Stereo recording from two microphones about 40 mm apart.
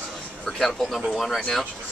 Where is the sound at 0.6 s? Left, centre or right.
Centre.